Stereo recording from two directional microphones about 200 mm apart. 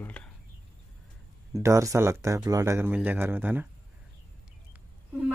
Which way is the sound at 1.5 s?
15° right (ahead or behind).